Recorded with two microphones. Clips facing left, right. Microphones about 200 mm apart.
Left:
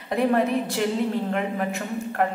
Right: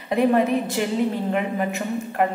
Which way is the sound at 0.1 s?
Centre (ahead or behind).